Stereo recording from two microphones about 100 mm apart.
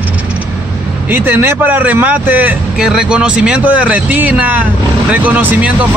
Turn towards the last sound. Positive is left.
turn(degrees=-15)  # may be behind; listen again after turning